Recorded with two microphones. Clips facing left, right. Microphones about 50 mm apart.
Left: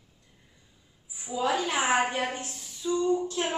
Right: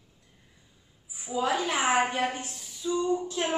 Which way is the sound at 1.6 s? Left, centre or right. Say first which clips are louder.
Right 1 dB; right.